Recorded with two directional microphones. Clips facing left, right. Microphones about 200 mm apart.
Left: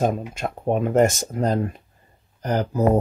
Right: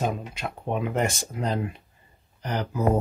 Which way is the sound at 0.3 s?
45° left (ahead or behind).